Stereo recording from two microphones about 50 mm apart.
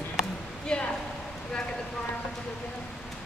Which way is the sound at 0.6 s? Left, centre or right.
Centre.